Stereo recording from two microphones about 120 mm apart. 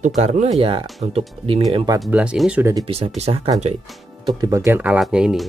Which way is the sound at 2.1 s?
10° right (ahead or behind).